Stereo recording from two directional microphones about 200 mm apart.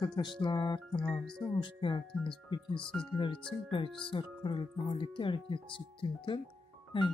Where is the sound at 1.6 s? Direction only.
25° left (ahead or behind).